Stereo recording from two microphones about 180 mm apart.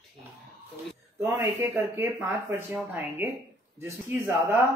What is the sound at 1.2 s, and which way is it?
Speech, 10° right (ahead or behind).